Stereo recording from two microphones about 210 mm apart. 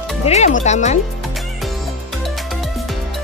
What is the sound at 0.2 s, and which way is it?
Speech, 30° left (ahead or behind).